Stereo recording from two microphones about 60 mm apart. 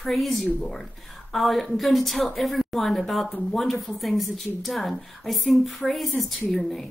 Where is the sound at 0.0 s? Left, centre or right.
Centre.